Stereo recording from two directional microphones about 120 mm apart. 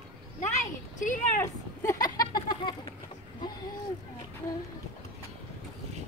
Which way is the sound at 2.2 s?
35° left (ahead or behind).